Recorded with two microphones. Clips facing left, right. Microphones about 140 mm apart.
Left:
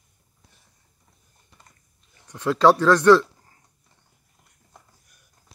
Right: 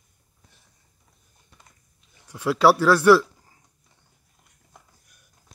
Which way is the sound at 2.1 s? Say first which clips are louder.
Even; 10° right (ahead or behind).